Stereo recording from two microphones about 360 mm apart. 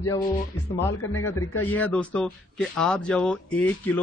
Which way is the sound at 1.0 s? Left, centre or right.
Left.